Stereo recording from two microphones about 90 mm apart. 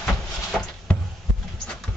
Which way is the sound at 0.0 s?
10° left (ahead or behind).